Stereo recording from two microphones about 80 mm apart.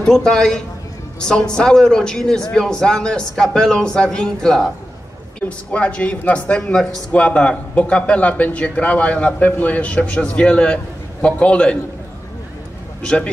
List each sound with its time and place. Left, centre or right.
0.0 s speech: centre
5.7 s speech: centre
13.0 s speech: centre